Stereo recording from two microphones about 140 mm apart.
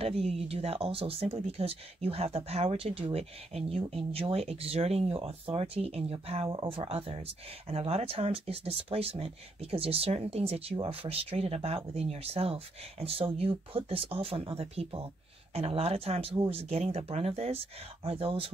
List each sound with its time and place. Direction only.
0.0 s speech: 45° right (ahead or behind)